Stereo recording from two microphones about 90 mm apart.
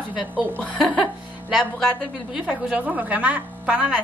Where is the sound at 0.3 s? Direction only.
20° right (ahead or behind).